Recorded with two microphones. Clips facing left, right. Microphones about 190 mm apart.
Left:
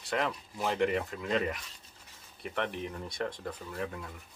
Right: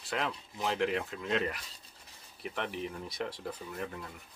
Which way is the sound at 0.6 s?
Centre (ahead or behind).